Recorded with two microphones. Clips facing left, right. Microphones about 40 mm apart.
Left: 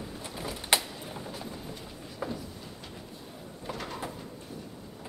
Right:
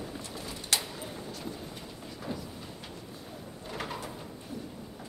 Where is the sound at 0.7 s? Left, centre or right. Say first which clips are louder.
Left 5 dB; left.